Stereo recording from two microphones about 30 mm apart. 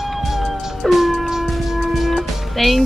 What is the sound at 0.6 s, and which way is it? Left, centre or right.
Music, centre.